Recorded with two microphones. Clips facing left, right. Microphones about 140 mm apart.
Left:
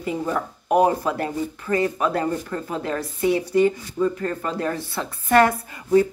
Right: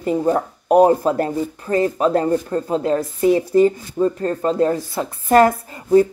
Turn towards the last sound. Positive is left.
turn(degrees=-35)  # may be behind; listen again after turning